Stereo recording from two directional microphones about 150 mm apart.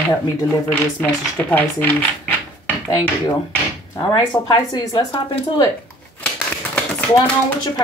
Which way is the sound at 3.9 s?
25° left (ahead or behind).